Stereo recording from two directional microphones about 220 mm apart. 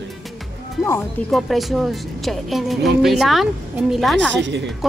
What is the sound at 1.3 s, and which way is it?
Speech, centre (ahead or behind).